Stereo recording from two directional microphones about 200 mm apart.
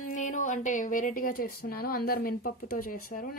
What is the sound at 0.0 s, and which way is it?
A woman's voice, 40° left (ahead or behind).